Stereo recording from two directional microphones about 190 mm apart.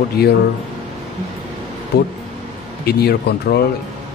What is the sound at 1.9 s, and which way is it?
Speech, 65° left (ahead or behind).